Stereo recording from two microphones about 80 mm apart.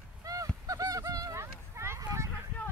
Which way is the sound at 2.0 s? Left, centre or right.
Right.